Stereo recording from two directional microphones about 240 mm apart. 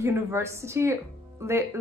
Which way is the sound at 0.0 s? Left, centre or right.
Centre.